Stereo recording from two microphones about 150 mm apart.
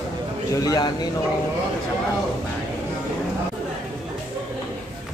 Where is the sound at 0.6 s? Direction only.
25° left (ahead or behind).